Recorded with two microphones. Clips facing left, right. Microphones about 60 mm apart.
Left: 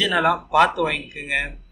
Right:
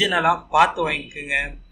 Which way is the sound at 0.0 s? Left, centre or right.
Centre.